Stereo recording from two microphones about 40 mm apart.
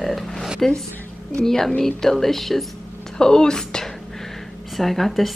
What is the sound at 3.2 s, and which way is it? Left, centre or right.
Speech, centre.